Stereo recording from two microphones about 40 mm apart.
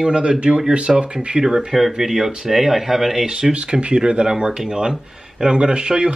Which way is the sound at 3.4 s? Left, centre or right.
Right.